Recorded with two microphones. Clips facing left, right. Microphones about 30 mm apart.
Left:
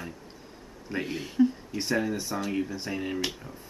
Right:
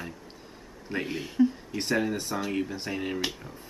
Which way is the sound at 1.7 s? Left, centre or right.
Centre.